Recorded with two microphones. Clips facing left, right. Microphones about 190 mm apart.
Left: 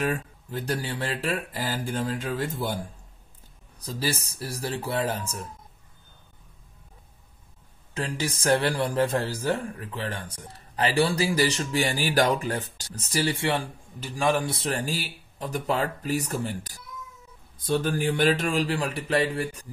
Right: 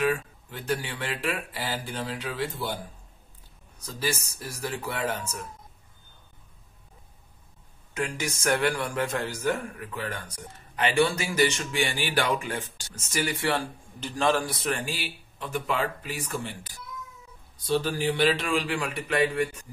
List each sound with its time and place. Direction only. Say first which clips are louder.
0.0 s speech: right 2 dB; 40° left (ahead or behind)
3.8 s speech: left 1 dB; 35° left (ahead or behind)
7.9 s speech: left 1 dB; 30° left (ahead or behind)
13.9 s a man's voice: even; 10° left (ahead or behind)
14.4 s speech: left 1 dB; 30° left (ahead or behind)
17.6 s speech: left 1 dB; 50° left (ahead or behind); by 19.7 s 35° left (ahead or behind)